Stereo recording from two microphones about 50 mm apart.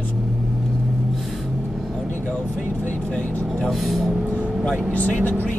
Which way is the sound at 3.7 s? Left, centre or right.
Centre.